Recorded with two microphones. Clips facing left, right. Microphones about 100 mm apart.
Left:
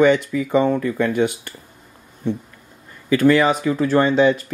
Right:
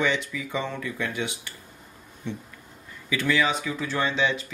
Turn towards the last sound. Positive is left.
turn(degrees=50)  # may be behind; listen again after turning